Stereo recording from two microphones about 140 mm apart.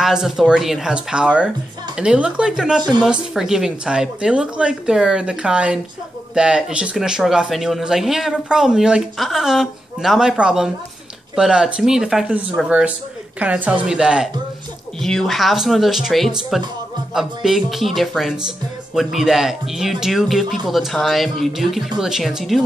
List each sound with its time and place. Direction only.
0.0 s speech: 5° right (ahead or behind)
2.8 s a woman's voice: 30° right (ahead or behind)
3.1 s a woman's voice: 5° right (ahead or behind)